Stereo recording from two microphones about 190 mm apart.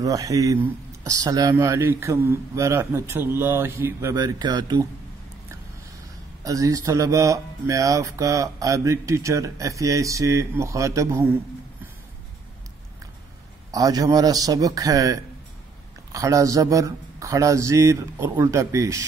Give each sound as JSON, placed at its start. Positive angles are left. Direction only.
{"t": 0.0, "sound": "speech", "side_deg": -20}
{"t": 6.4, "sound": "speech", "side_deg": -20}
{"t": 13.7, "sound": "a man's voice", "side_deg": -20}